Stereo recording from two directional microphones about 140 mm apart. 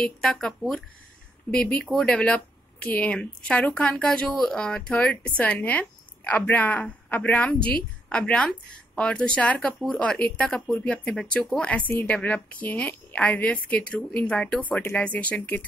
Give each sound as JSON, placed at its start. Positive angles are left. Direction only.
{"t": 0.0, "sound": "a woman's voice", "side_deg": 5}